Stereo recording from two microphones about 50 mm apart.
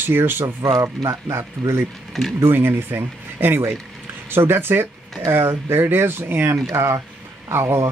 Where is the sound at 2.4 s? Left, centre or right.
Right.